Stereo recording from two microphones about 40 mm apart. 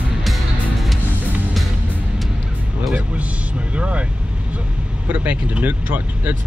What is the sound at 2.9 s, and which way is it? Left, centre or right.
Speech, right.